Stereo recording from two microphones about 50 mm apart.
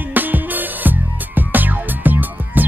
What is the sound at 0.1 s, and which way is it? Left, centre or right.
Music, right.